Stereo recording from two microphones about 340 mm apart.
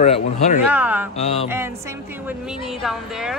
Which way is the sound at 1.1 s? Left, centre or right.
Centre.